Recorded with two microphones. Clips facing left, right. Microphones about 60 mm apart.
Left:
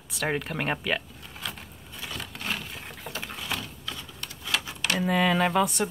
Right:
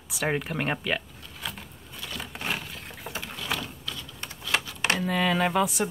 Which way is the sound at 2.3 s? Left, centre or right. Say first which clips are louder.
Right 2 dB; centre.